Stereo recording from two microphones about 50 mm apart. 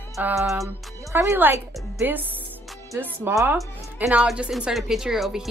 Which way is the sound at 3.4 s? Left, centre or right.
Right.